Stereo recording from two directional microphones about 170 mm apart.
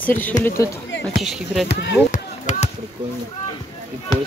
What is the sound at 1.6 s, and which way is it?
Speech, 75° left (ahead or behind).